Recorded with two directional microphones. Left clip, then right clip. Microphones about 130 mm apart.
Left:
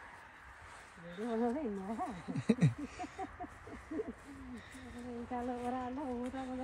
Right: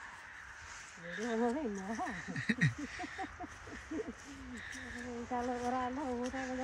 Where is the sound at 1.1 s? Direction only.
20° left (ahead or behind).